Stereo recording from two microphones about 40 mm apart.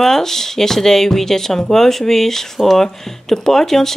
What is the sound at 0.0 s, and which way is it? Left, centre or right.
Speech, centre.